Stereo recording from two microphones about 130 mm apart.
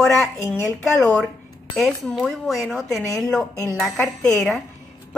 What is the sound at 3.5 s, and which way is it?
Speech, 20° right (ahead or behind).